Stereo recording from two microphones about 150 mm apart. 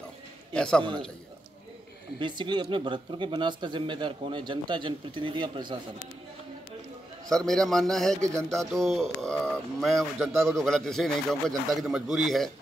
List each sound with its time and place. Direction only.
0.5 s a man's voice: 5° left (ahead or behind)
2.1 s speech: 30° right (ahead or behind)
7.2 s speech: 5° left (ahead or behind)
8.2 s music: 20° right (ahead or behind)
8.7 s speech: centre (ahead or behind)